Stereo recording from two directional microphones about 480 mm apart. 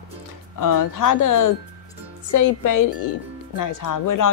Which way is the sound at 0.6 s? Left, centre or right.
Left.